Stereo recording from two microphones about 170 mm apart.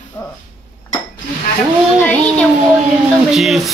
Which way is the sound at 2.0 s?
10° left (ahead or behind).